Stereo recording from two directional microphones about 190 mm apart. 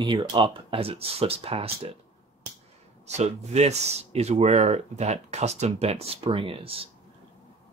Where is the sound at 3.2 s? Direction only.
35° right (ahead or behind).